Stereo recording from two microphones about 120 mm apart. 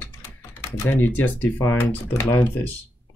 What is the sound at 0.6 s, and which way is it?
Speech, 20° left (ahead or behind).